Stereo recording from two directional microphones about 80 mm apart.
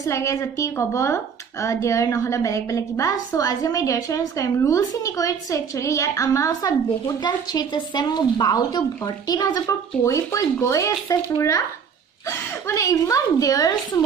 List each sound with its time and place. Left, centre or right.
0.0 s speech: left
7.2 s speech: left